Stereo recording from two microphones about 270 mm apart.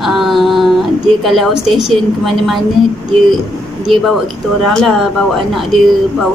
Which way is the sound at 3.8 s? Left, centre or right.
Centre.